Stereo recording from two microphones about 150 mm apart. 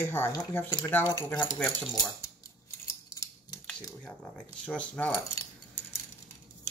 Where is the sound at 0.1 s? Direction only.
15° left (ahead or behind).